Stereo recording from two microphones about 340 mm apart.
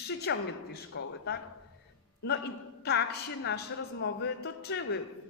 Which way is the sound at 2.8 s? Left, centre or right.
Left.